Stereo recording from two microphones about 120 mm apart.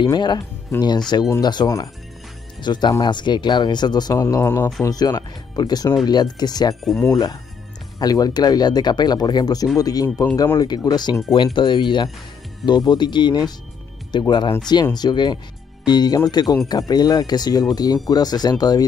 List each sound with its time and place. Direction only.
0.0 s speech: 40° left (ahead or behind)
4.2 s speech: 20° left (ahead or behind)
4.8 s speech: 30° left (ahead or behind)
6.8 s speech: centre (ahead or behind)
7.1 s speech: 30° left (ahead or behind)